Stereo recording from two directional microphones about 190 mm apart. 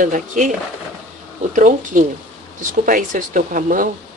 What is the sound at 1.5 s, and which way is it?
Speech, 40° right (ahead or behind).